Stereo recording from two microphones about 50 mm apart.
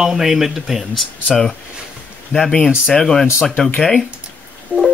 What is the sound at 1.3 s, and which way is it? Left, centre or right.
Speech, centre.